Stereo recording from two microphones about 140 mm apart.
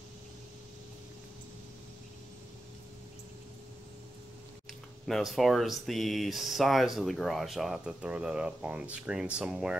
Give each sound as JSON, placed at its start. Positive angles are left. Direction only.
{"t": 5.0, "sound": "speech", "side_deg": 0}